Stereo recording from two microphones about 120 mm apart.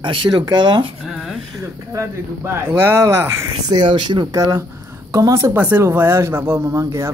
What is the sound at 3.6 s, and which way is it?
Speech, 40° right (ahead or behind).